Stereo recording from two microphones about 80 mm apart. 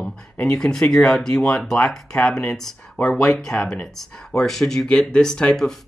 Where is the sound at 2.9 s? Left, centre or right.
Left.